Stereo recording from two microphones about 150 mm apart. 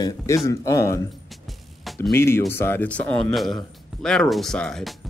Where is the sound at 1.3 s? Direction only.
Centre (ahead or behind).